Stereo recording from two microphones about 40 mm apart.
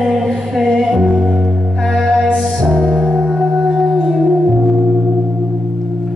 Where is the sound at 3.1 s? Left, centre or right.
Centre.